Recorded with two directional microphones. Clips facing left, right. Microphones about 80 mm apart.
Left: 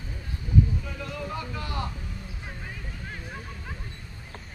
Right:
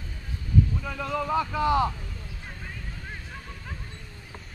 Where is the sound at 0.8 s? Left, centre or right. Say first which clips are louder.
Right 6 dB; right.